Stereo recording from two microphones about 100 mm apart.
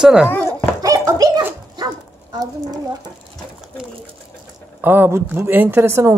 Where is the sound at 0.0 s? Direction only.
10° right (ahead or behind).